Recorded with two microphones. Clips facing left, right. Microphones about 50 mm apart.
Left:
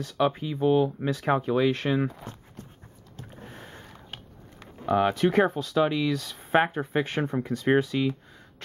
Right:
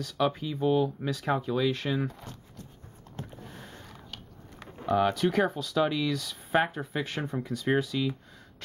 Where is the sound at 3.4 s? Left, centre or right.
Left.